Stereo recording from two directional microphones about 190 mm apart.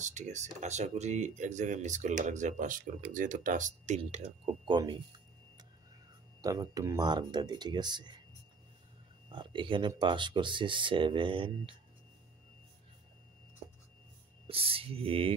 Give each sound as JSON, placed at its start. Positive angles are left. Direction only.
{"t": 0.0, "sound": "speech", "side_deg": -40}
{"t": 6.4, "sound": "speech", "side_deg": -20}
{"t": 9.3, "sound": "speech", "side_deg": -25}
{"t": 14.5, "sound": "speech", "side_deg": -30}